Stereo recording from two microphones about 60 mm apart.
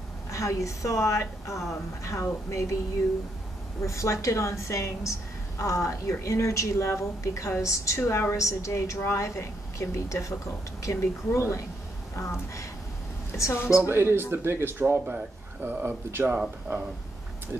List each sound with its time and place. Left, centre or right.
0.3 s speech: left
3.8 s speech: left
13.8 s speech: right
16.3 s speech: right